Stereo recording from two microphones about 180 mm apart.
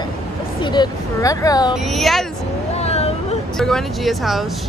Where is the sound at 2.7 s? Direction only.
35° left (ahead or behind).